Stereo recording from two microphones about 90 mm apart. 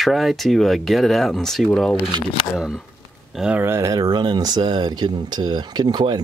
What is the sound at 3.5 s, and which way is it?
Speech, 30° right (ahead or behind).